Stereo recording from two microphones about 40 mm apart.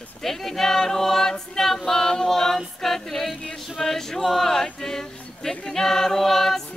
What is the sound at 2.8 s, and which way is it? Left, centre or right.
Music, centre.